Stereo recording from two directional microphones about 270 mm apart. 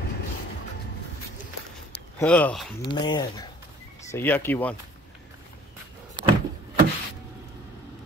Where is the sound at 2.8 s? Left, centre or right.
Centre.